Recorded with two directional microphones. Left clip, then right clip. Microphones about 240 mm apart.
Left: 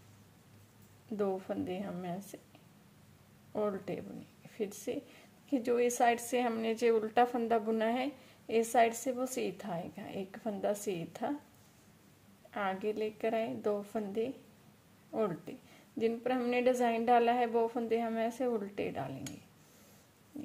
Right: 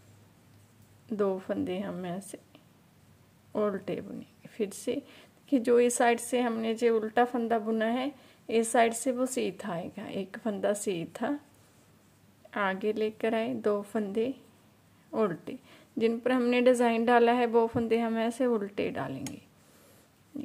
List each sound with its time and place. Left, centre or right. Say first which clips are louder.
1.1 s a woman's voice: right 5 dB; centre
3.5 s a woman's voice: right 5 dB; centre
12.4 s a woman's voice: right 5 dB; centre